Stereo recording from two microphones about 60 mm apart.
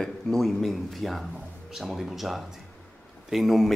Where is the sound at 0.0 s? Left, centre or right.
Centre.